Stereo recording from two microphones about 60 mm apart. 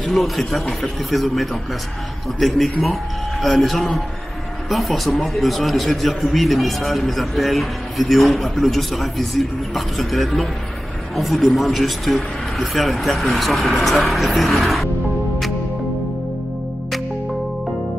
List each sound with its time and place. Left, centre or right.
0.0 s speech: centre